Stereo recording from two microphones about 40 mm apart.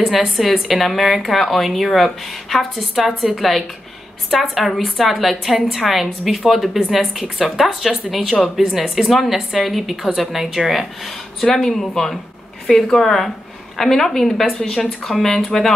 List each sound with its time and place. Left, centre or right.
0.0 s a woman's voice: centre
11.4 s a woman's voice: centre